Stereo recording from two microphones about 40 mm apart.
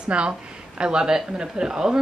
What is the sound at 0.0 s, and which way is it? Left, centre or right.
Speech, right.